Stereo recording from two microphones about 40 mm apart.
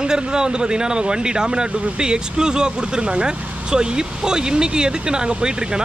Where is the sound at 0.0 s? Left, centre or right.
Centre.